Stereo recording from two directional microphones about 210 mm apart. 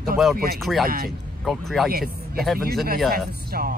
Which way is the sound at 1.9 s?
45° right (ahead or behind).